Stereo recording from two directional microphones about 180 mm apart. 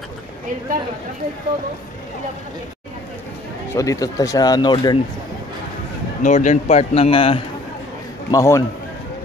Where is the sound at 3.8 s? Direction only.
20° left (ahead or behind).